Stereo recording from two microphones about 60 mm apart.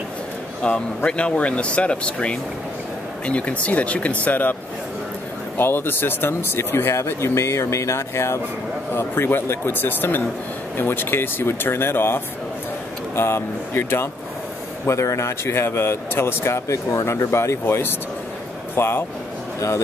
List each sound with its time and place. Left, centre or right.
0.6 s speech: centre
5.6 s speech: left
14.9 s speech: left